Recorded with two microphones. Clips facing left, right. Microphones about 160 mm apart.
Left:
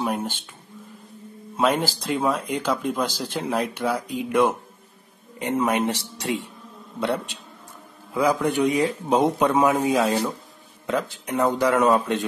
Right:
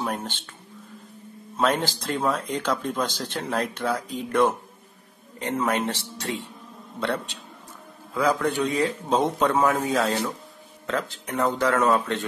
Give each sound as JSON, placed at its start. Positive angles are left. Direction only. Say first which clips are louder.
{"t": 0.0, "sound": "speech", "louder": "left 3 dB", "side_deg": 10}
{"t": 1.6, "sound": "speech", "louder": "left 2 dB", "side_deg": 5}
{"t": 8.1, "sound": "speech", "louder": "left 2 dB", "side_deg": 15}